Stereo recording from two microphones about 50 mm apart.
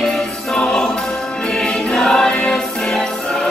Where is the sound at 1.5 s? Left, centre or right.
Centre.